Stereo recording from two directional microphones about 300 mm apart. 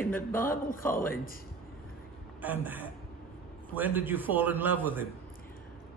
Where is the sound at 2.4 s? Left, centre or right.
Centre.